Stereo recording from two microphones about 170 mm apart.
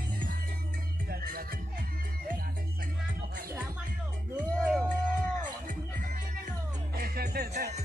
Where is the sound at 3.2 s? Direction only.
60° right (ahead or behind).